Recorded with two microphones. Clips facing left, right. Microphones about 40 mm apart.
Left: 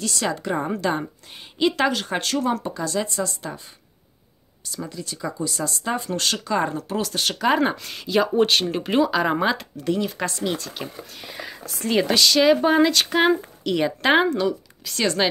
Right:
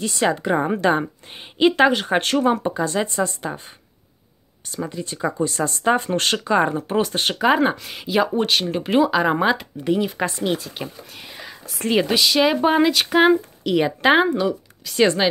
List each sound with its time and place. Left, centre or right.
0.0 s speech: right
4.7 s speech: right
7.4 s speech: centre
8.4 s speech: centre; by 10.6 s right
10.6 s speech: centre